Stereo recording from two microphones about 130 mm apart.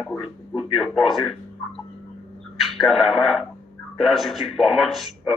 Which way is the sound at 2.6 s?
Centre (ahead or behind).